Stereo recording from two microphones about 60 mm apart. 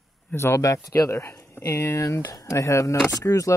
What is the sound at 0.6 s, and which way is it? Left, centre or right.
Speech, left.